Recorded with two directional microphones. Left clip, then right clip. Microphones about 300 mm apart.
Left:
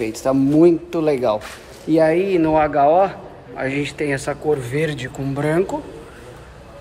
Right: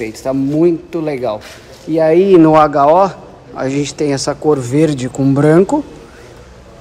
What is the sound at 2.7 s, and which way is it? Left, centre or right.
Speech, centre.